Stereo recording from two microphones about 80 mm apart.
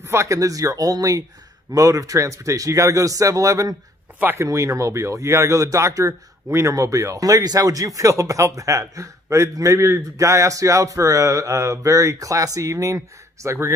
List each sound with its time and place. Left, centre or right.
0.0 s a man's voice: right
4.2 s speech: right
4.5 s a man's voice: right